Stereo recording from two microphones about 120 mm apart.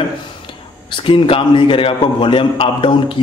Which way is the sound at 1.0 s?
45° left (ahead or behind).